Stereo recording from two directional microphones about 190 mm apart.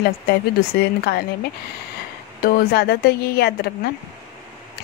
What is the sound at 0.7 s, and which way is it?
Speech, 60° left (ahead or behind).